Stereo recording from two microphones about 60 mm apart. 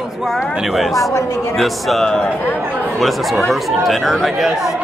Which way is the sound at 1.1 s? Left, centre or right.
Left.